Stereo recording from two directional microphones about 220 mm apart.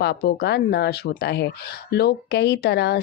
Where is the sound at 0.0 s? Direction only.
50° left (ahead or behind).